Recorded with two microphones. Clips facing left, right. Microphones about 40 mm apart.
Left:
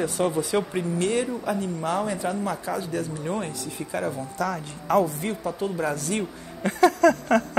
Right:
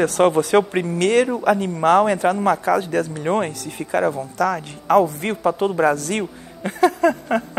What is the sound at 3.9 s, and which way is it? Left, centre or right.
Speech, right.